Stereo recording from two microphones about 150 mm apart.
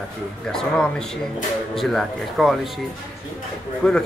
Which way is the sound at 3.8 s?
5° left (ahead or behind).